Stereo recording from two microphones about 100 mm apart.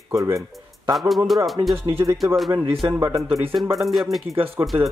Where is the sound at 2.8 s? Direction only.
30° right (ahead or behind).